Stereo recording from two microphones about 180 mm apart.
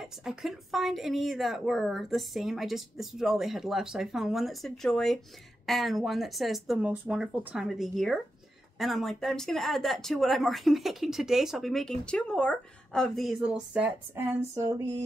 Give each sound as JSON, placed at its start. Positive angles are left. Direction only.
{"t": 0.2, "sound": "speech", "side_deg": 0}